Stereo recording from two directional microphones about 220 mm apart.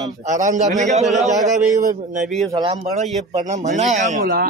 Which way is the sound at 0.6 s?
30° right (ahead or behind).